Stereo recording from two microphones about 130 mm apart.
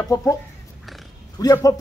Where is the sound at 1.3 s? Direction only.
30° left (ahead or behind).